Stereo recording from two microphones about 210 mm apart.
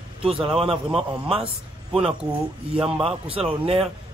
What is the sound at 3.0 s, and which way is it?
Speech, 25° right (ahead or behind).